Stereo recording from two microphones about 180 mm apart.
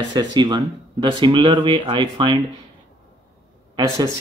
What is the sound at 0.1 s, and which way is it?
Speech, 25° right (ahead or behind).